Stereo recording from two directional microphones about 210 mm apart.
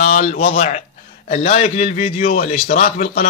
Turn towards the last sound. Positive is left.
turn(degrees=40)  # may be behind; listen again after turning